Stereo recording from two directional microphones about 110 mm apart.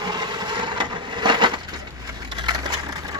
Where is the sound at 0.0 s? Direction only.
40° right (ahead or behind).